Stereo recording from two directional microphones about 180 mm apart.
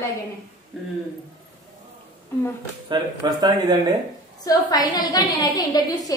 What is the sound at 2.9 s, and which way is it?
Speech, 25° right (ahead or behind).